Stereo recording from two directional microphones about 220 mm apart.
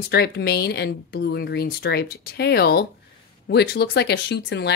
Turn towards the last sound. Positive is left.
turn(degrees=50)  # may be behind; listen again after turning